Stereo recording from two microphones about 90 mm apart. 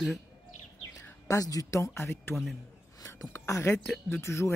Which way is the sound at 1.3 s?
40° left (ahead or behind).